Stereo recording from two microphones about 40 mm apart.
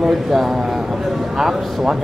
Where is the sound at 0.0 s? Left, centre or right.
Centre.